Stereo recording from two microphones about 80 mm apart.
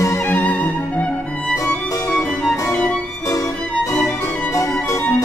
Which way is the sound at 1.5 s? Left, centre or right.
Left.